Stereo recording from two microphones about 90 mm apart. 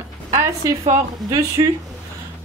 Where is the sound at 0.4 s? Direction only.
40° right (ahead or behind).